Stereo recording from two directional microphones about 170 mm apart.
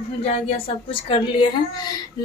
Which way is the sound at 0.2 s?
35° left (ahead or behind).